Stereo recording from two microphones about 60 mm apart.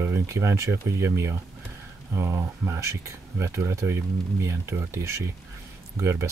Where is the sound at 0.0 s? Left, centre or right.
Right.